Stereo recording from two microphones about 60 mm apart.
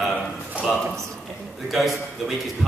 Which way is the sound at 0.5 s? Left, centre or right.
Right.